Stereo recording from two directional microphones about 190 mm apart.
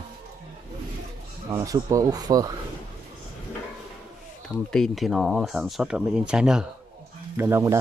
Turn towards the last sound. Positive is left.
turn(degrees=-15)  # may be behind; listen again after turning